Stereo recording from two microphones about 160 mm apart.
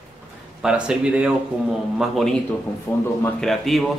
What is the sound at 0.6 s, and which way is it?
Speech, 5° right (ahead or behind).